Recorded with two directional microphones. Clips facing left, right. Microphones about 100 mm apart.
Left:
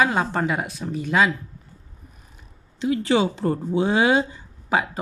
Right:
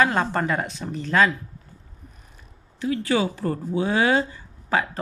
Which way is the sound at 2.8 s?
20° left (ahead or behind).